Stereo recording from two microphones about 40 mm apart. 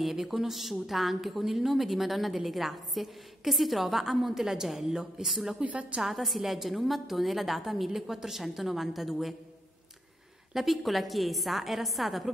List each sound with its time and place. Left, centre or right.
0.0 s a woman's voice: centre
5.6 s a woman's voice: right
6.0 s a woman's voice: centre
10.5 s a woman's voice: centre